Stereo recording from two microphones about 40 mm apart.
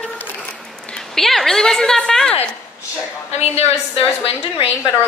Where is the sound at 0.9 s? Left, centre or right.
Centre.